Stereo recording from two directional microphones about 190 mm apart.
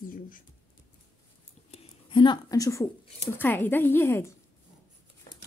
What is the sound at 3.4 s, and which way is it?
Speech, 10° left (ahead or behind).